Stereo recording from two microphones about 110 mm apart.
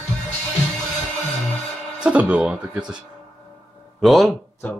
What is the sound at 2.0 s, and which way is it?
Music, 10° right (ahead or behind).